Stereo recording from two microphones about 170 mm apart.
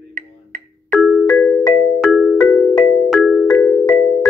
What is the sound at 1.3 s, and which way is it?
Music, 10° left (ahead or behind).